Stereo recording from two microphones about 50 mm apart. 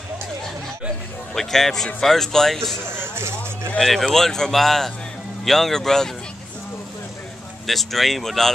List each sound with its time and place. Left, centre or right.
1.3 s speech: centre
2.9 s vehicle: right
4.0 s speech: centre
7.6 s speech: centre